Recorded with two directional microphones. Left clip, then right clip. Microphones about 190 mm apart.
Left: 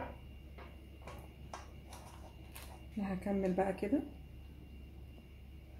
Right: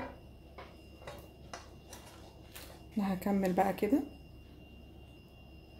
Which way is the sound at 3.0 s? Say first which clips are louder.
Right 4 dB; 40° right (ahead or behind).